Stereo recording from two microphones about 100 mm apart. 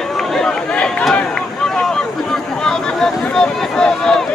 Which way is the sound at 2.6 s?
5° left (ahead or behind).